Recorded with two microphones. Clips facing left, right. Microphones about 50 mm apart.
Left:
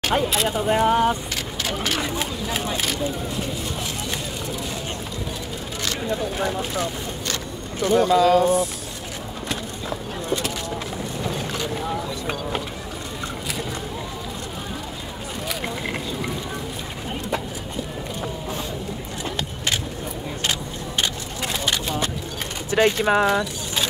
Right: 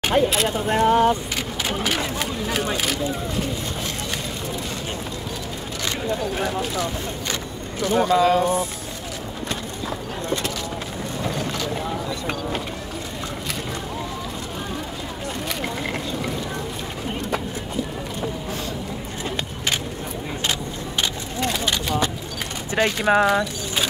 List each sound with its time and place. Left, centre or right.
0.1 s speech: centre
2.1 s speech: centre
7.9 s speech: right
21.0 s a sound: centre
22.7 s speech: right